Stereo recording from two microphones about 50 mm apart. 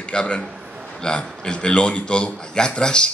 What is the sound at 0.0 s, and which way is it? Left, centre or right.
A man's voice, left.